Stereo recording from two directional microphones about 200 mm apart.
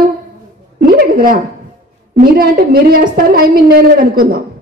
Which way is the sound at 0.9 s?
45° right (ahead or behind).